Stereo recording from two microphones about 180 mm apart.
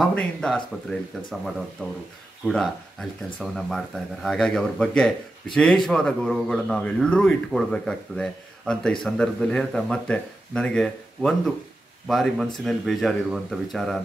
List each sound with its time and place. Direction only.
0.0 s speech: 5° left (ahead or behind)